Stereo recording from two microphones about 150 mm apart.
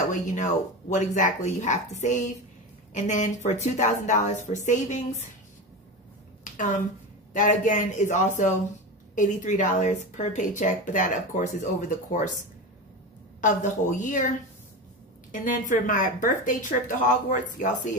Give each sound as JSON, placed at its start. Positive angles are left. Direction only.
{"t": 0.1, "sound": "speech", "side_deg": 55}
{"t": 6.4, "sound": "a sound", "side_deg": 60}
{"t": 7.3, "sound": "speech", "side_deg": 60}
{"t": 13.4, "sound": "speech", "side_deg": 60}
{"t": 15.3, "sound": "speech", "side_deg": 60}